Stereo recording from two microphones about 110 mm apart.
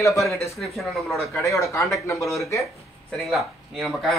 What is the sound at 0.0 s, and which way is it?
Speech, 30° left (ahead or behind).